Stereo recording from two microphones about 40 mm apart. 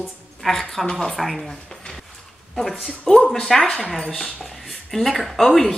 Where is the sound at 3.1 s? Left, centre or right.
Centre.